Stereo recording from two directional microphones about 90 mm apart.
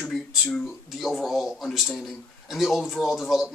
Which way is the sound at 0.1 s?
Centre (ahead or behind).